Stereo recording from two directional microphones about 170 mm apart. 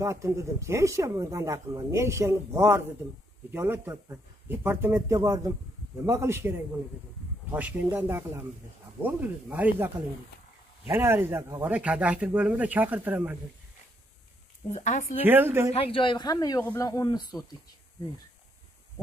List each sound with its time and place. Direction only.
0.0 s speech: 15° right (ahead or behind)
7.5 s speech: 10° right (ahead or behind)
10.9 s speech: 15° right (ahead or behind)
14.7 s speech: 45° left (ahead or behind)
15.2 s speech: 10° right (ahead or behind)
15.8 s speech: 30° left (ahead or behind)